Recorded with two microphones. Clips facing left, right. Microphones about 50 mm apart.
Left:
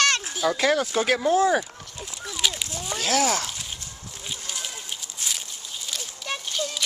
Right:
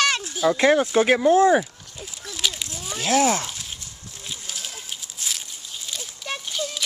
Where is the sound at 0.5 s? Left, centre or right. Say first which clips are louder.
Right 6 dB; right.